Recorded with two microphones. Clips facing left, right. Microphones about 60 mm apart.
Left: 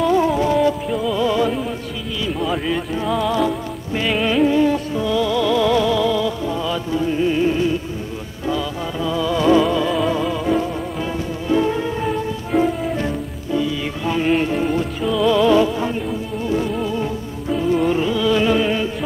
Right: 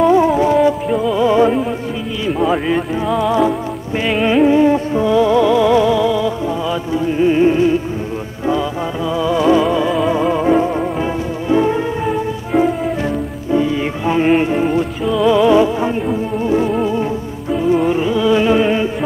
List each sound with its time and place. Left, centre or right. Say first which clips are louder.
0.0 s music: right 5 dB; centre
3.1 s music: right 4 dB; centre
13.0 s music: right 4 dB; right